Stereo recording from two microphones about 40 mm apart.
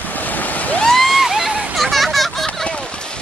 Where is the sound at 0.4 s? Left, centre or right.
Left.